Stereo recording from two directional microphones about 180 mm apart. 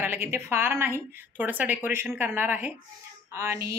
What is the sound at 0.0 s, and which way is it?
A woman's voice, 10° right (ahead or behind).